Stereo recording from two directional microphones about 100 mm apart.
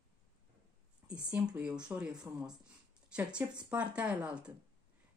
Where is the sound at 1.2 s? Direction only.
10° right (ahead or behind).